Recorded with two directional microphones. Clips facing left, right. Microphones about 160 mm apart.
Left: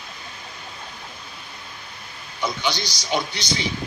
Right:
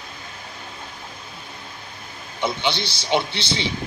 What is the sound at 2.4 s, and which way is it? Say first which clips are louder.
A man's voice: right 2 dB; 25° right (ahead or behind).